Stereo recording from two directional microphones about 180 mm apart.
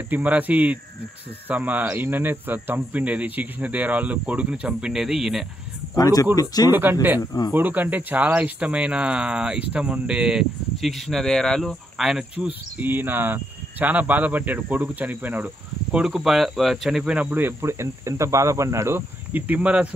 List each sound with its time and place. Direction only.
0.1 s speech: 10° right (ahead or behind)
5.9 s speech: 20° left (ahead or behind)
6.7 s speech: 10° right (ahead or behind)
7.2 s speech: 25° left (ahead or behind)
7.5 s speech: 10° right (ahead or behind)